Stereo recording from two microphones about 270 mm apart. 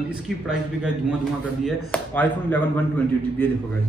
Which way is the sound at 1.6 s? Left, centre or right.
Centre.